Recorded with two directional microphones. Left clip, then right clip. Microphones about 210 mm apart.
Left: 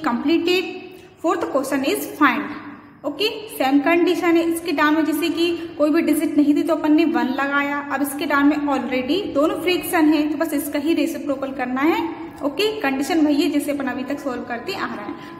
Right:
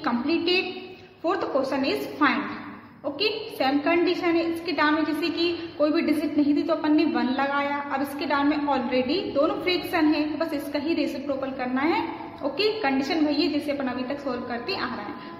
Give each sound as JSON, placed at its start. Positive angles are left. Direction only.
{"t": 1.2, "sound": "a woman's voice", "side_deg": 20}